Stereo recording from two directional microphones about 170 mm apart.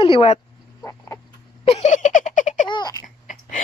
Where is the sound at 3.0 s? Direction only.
50° left (ahead or behind).